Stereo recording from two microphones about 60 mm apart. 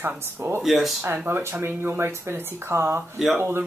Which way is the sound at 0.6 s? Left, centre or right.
Centre.